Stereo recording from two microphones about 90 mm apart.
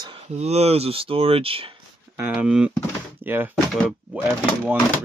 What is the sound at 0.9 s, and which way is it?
Speech, 90° right.